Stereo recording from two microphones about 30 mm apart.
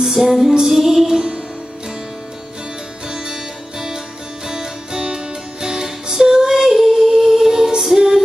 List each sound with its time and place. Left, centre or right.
0.0 s music: centre
1.0 s music: right
4.5 s music: right